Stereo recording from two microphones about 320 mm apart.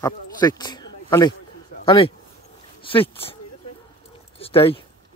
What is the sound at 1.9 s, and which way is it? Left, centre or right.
Speech, centre.